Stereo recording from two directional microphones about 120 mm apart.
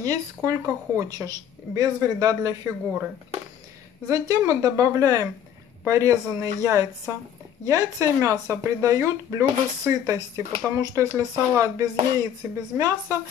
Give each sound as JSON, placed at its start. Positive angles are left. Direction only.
{"t": 0.0, "sound": "speech", "side_deg": -30}
{"t": 4.1, "sound": "speech", "side_deg": -30}